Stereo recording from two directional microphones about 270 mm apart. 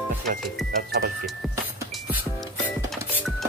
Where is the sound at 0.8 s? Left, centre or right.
Right.